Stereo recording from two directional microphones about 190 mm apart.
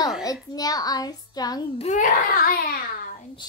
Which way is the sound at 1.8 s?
45° left (ahead or behind).